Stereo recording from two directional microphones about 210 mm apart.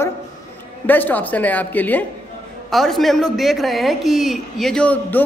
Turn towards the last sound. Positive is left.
turn(degrees=5)  # may be behind; listen again after turning